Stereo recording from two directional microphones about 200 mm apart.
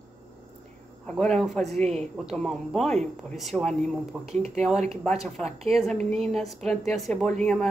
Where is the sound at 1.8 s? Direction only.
35° right (ahead or behind).